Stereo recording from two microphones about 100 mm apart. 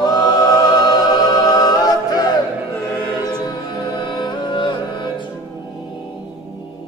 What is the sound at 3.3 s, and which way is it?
Music, 45° left (ahead or behind).